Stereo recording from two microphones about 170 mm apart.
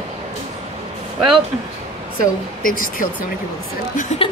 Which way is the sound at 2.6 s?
55° left (ahead or behind).